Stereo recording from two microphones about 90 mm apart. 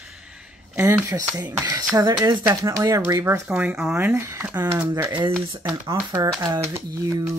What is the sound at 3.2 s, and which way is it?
Speech, 25° right (ahead or behind).